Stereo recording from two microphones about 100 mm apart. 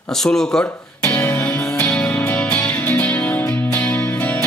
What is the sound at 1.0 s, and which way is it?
Music, 30° left (ahead or behind).